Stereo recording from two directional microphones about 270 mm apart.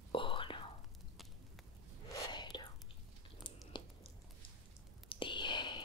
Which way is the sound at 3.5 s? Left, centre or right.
Centre.